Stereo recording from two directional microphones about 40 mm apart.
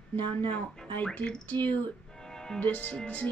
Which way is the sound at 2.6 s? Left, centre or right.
Left.